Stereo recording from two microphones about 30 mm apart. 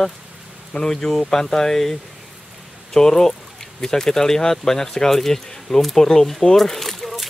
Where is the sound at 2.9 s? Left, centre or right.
Centre.